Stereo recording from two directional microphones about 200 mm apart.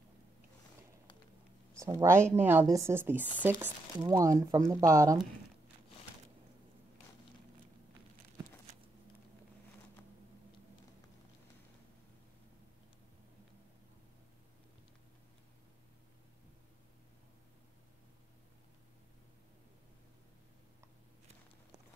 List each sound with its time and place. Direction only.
1.8 s speech: 15° right (ahead or behind)